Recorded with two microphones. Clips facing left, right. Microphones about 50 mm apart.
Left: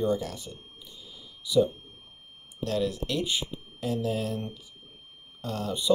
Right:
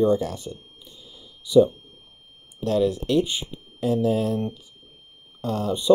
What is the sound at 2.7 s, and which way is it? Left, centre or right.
Speech, right.